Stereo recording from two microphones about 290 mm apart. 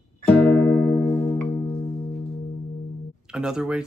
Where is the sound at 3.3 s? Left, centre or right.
Centre.